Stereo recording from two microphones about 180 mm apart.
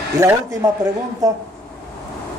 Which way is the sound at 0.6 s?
15° right (ahead or behind).